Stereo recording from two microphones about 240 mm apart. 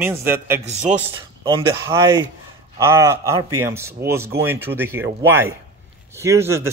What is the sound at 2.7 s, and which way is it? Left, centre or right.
Speech, centre.